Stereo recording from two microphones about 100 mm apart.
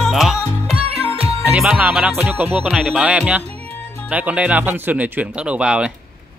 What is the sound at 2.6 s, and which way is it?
Speech, 5° right (ahead or behind).